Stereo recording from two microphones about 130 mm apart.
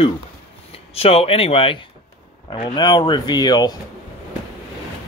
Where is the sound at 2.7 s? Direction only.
35° left (ahead or behind).